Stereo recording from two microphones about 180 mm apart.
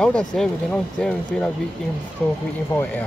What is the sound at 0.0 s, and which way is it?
Speech, 5° left (ahead or behind).